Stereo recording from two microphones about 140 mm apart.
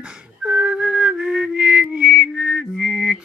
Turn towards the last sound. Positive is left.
turn(degrees=-5)  # may be behind; listen again after turning